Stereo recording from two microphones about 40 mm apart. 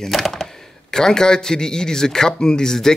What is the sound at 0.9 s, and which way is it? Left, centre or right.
Speech, centre.